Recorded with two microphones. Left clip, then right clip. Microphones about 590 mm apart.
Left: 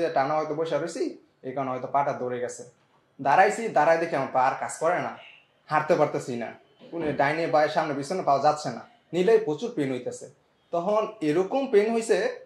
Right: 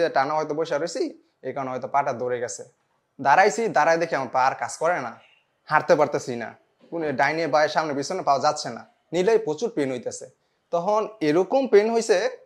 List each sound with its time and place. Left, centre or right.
0.0 s a man's voice: right